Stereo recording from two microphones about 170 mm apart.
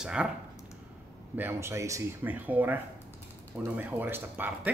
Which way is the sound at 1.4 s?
15° right (ahead or behind).